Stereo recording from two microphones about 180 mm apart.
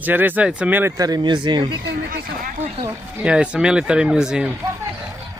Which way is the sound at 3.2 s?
5° right (ahead or behind).